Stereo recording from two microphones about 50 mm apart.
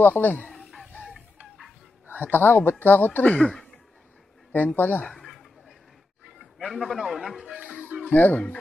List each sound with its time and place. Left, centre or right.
0.0 s speech: left
2.0 s a sound: right
2.3 s speech: left
3.3 s chuckle: centre
4.7 s speech: left
5.1 s a sound: centre
6.6 s a man's voice: centre
8.1 s speech: left